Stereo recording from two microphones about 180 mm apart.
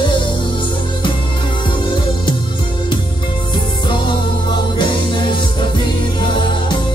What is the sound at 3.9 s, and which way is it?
Music, 25° left (ahead or behind).